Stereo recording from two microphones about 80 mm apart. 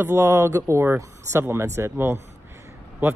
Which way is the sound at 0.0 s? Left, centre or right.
Right.